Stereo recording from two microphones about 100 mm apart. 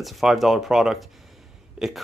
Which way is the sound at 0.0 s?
Centre (ahead or behind).